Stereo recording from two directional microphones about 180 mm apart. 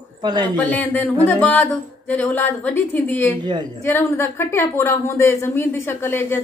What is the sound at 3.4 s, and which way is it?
Speech, 25° right (ahead or behind).